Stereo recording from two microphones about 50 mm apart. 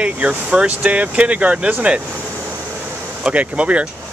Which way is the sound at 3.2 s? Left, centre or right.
Right.